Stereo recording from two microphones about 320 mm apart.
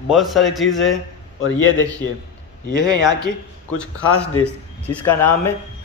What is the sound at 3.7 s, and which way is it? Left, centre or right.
A man's voice, centre.